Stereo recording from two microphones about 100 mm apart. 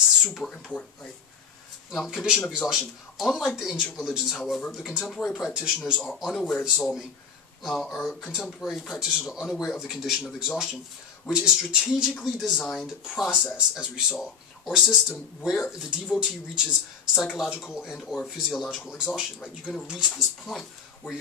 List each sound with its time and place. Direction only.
0.3 s speech: 10° left (ahead or behind)
1.9 s speech: centre (ahead or behind)